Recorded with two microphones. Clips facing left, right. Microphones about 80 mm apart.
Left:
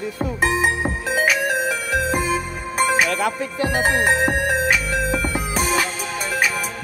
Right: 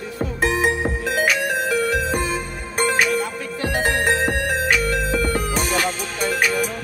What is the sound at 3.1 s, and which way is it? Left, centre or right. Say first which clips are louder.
Music: left 1 dB; left.